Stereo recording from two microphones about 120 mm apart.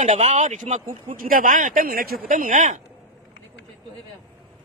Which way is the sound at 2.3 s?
90° right.